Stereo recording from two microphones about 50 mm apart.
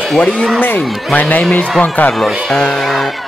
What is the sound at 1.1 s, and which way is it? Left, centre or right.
Speech, left.